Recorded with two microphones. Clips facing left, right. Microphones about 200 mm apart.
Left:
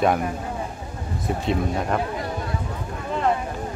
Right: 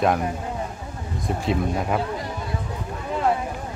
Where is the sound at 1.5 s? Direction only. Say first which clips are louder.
Even; 5° right (ahead or behind).